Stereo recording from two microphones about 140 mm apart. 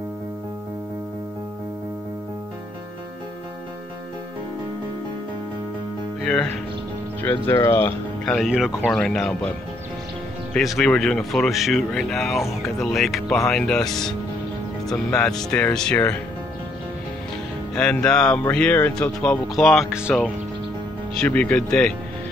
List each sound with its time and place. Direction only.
6.2 s speech: 5° left (ahead or behind)
7.2 s speech: 20° left (ahead or behind)
8.5 s speech: 5° right (ahead or behind)
10.5 s speech: centre (ahead or behind)
17.7 s speech: 5° left (ahead or behind)
21.1 s speech: 10° left (ahead or behind)